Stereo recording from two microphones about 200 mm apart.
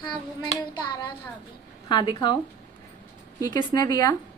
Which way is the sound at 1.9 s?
20° left (ahead or behind).